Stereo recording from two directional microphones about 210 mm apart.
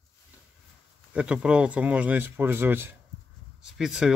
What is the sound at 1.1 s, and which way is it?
Speech, 5° right (ahead or behind).